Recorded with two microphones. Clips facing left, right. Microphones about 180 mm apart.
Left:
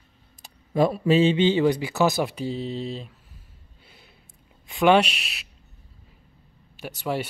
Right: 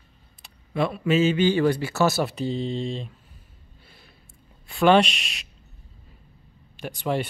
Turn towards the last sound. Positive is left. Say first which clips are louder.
# right 2 dB
turn(degrees=10)  # may be behind; listen again after turning